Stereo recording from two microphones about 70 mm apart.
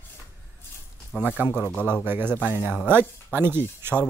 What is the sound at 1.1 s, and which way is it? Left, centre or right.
Speech, centre.